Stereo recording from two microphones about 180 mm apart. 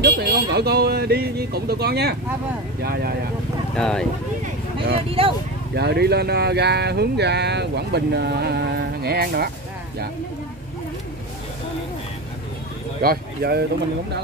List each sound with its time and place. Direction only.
0.0 s speech: 65° right (ahead or behind)
3.7 s speech: 5° left (ahead or behind)
5.2 s speech: 30° right (ahead or behind)
5.8 s speech: 60° right (ahead or behind)
13.0 s speech: 60° right (ahead or behind)